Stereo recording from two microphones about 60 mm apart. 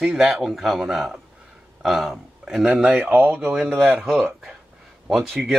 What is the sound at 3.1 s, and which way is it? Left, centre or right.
Speech, right.